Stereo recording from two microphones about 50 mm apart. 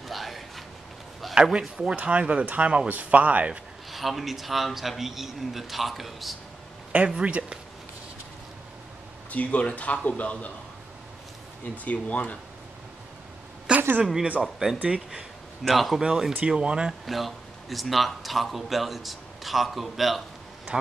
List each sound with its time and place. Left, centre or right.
0.1 s a sound: centre
1.3 s speech: centre
2.0 s speech: right
3.9 s a man's voice: centre
7.1 s speech: right
9.3 s speech: left
11.6 s speech: left
13.7 s a sound: right
14.4 s a man's voice: centre
16.0 s speech: centre
17.0 s a man's voice: centre